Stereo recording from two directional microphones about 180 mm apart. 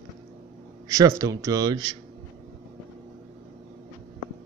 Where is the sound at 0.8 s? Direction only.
15° right (ahead or behind).